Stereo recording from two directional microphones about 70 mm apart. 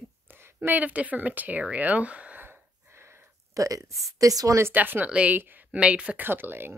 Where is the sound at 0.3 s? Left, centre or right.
Right.